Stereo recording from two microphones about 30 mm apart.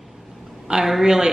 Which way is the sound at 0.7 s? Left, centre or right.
Right.